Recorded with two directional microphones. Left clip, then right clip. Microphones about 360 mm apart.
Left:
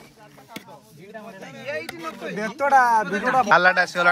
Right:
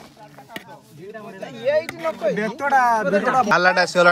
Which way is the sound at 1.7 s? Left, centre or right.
Right.